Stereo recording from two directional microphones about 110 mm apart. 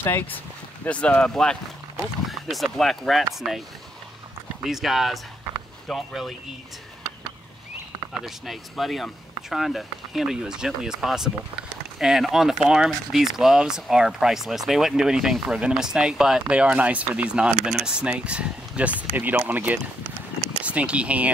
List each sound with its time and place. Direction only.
0.0 s speech: 20° left (ahead or behind); by 3.6 s 5° right (ahead or behind)
4.6 s speech: centre (ahead or behind)
8.5 s speech: centre (ahead or behind)